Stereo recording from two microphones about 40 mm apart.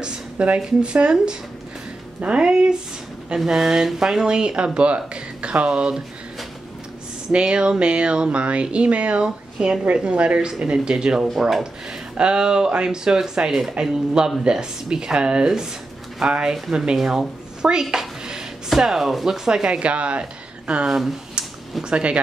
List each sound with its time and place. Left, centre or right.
0.0 s a sound: right
0.8 s speech: right
7.3 s speech: right
9.6 s speech: right
19.7 s speech: right